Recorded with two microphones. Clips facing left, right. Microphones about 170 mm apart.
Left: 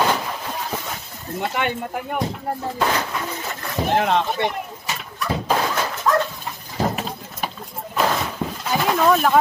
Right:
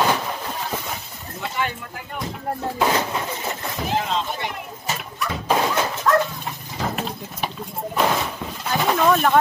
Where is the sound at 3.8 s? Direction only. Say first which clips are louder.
Left 5 dB; 65° left (ahead or behind).